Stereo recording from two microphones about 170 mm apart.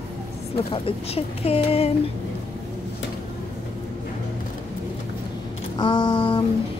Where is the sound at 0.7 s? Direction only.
35° left (ahead or behind).